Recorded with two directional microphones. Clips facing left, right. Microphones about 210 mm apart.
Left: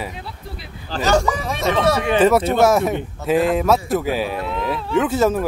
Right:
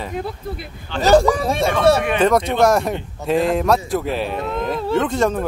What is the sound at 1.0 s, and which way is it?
Speech, 35° right (ahead or behind).